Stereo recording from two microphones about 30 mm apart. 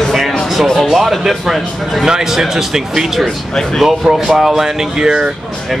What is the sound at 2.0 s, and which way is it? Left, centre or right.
Speech, right.